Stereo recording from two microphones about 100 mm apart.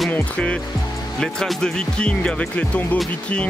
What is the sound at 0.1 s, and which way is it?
Speech, 10° left (ahead or behind).